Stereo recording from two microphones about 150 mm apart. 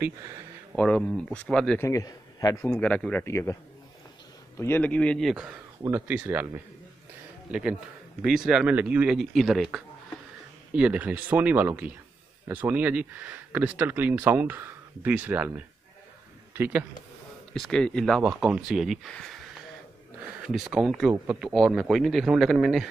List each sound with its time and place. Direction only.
0.7 s speech: 5° left (ahead or behind)
1.8 s a man's voice: 20° left (ahead or behind)
2.5 s speech: 10° left (ahead or behind)
4.6 s speech: 15° left (ahead or behind); by 16.8 s 10° right (ahead or behind)
17.6 s speech: 5° left (ahead or behind)